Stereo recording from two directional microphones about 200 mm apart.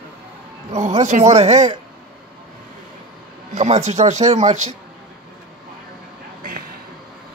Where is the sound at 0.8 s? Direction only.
35° right (ahead or behind).